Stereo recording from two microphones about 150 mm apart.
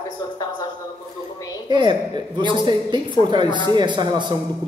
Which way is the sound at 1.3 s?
25° left (ahead or behind).